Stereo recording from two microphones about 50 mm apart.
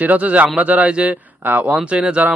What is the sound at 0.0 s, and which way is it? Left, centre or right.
A man's voice, right.